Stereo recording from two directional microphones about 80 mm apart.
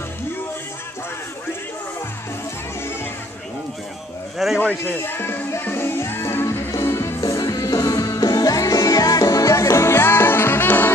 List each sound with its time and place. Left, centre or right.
4.6 s music: left
7.2 s music: left